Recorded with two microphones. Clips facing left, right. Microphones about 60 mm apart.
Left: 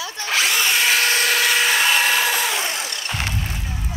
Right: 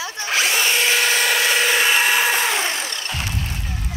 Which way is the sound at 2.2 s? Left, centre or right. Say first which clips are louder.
Right 2 dB; right.